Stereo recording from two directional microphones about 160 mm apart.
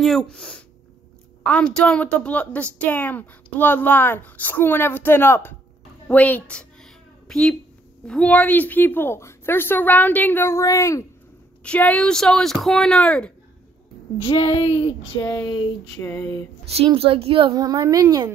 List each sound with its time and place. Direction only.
0.0 s speech: centre (ahead or behind)
6.0 s a sound: 10° left (ahead or behind)
8.1 s speech: 5° left (ahead or behind)
14.2 s speech: 35° left (ahead or behind)
16.0 s speech: 10° left (ahead or behind)
16.7 s a woman's voice: 35° right (ahead or behind)